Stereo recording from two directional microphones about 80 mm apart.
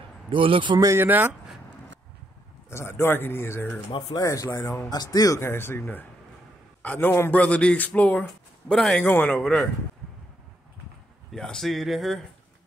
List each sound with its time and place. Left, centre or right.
0.3 s a man's voice: right
0.9 s speech: right
2.7 s speech: left
4.1 s speech: left
4.9 s speech: left
5.4 s a man's voice: left; by 9.0 s centre
9.0 s speech: left
9.4 s speech: centre
11.3 s speech: centre